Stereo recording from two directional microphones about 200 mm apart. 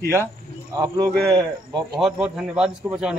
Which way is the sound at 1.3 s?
20° right (ahead or behind).